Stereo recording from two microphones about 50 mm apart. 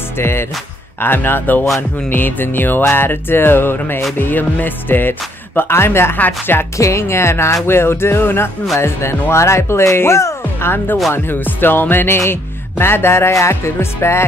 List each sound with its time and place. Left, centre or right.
0.2 s music: left
1.0 s music: left
6.1 s speech: left
6.8 s music: left
8.7 s speech: left
11.2 s music: left